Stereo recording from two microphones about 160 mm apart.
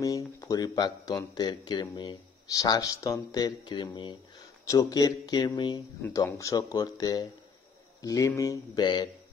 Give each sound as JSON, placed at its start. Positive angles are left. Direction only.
{"t": 0.0, "sound": "speech", "side_deg": 20}